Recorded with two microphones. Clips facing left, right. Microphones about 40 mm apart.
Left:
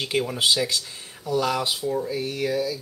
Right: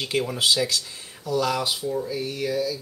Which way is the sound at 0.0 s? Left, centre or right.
Centre.